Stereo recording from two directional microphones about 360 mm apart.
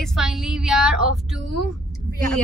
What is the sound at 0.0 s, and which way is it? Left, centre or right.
Speech, centre.